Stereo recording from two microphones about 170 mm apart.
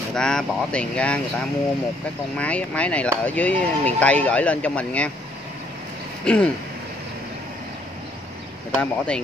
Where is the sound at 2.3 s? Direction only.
5° left (ahead or behind).